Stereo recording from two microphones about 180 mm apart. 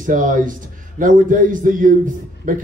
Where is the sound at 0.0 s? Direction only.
50° right (ahead or behind).